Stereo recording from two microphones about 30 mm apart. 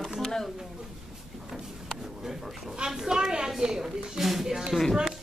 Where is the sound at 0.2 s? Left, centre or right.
Centre.